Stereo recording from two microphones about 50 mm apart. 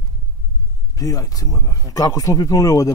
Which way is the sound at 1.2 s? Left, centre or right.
Left.